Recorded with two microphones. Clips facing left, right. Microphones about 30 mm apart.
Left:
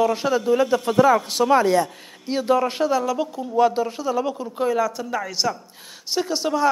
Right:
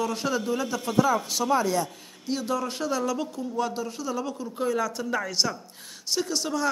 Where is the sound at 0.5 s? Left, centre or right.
Left.